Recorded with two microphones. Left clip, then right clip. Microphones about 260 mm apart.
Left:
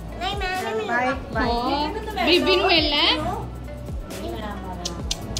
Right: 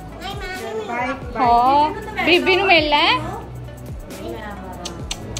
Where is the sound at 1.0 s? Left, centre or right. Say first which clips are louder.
Right 5 dB; centre.